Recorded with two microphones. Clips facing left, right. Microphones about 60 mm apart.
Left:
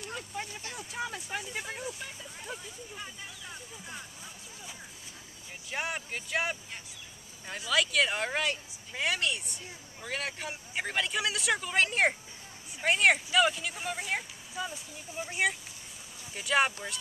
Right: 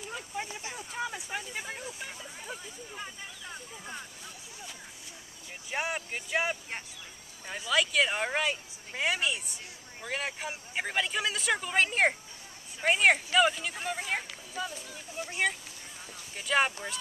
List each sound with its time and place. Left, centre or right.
0.0 s a sound: centre
0.5 s vehicle: centre
0.7 s speech: centre
5.7 s speech: centre